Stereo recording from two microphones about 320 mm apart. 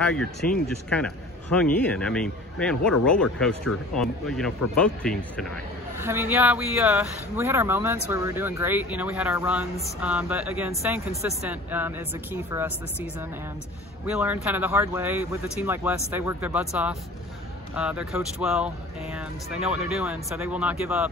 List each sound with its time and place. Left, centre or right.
0.0 s speech: centre
14.0 s speech: centre